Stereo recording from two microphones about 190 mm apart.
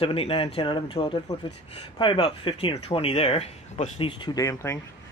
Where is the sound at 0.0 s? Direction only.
30° left (ahead or behind).